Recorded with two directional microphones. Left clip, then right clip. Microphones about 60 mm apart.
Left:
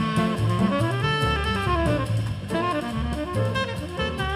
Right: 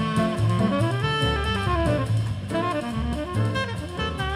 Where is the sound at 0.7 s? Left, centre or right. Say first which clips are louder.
Left 1 dB; centre.